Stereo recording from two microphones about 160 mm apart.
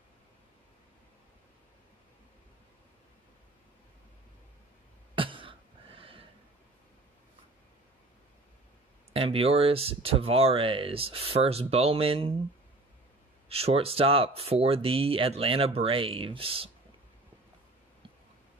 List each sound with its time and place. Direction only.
5.1 s cough: 35° right (ahead or behind)
9.1 s speech: 35° right (ahead or behind)
13.5 s speech: 40° right (ahead or behind)